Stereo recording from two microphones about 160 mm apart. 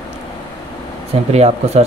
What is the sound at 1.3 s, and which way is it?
Speech, 40° right (ahead or behind).